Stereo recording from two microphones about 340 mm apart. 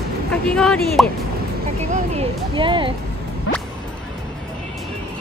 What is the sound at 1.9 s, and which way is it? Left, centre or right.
Speech, centre.